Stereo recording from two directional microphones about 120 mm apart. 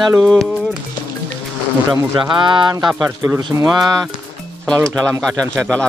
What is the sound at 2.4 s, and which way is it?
Speech, 40° right (ahead or behind).